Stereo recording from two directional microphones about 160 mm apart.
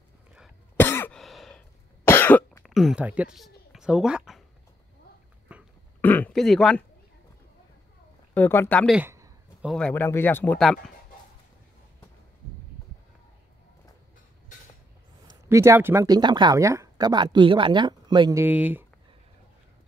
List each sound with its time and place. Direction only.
0.7 s cough: 15° left (ahead or behind)
1.2 s sigh: centre (ahead or behind)
2.0 s cough: 15° left (ahead or behind)
2.6 s speech: centre (ahead or behind)
5.5 s a sound: 10° right (ahead or behind)
5.9 s a sound: 10° left (ahead or behind)
8.4 s speech: 10° left (ahead or behind)
8.8 s speech: 5° right (ahead or behind)
9.8 s speech: 5° left (ahead or behind)
15.4 s speech: 15° right (ahead or behind)
18.4 s speech: 10° right (ahead or behind)